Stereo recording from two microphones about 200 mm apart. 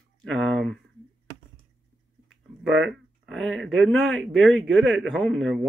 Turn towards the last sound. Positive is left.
turn(degrees=0)  # may be behind; listen again after turning